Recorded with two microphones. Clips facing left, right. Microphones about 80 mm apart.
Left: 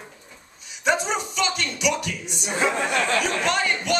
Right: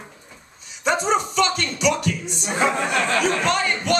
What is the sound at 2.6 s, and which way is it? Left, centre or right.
Speech, centre.